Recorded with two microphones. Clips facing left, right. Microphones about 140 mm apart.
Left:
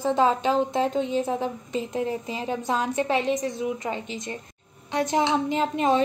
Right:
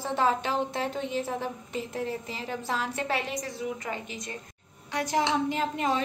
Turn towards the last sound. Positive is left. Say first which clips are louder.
# left 6 dB
turn(degrees=25)  # may be behind; listen again after turning